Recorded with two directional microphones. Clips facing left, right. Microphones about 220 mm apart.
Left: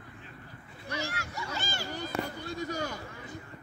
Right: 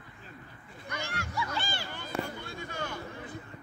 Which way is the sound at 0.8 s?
35° left (ahead or behind).